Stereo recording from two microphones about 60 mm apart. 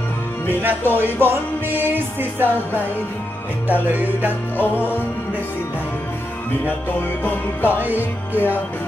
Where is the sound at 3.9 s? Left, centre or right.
Right.